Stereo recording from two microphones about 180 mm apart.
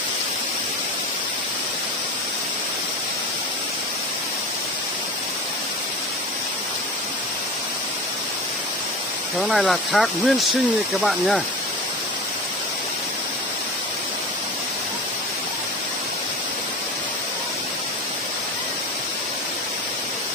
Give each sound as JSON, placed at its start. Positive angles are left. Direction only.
{"t": 9.4, "sound": "speech", "side_deg": 0}